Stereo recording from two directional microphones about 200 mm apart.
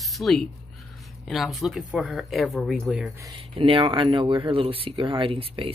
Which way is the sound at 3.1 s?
20° right (ahead or behind).